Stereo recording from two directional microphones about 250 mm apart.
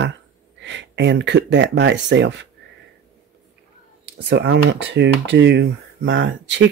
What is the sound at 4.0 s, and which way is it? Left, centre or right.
Speech, right.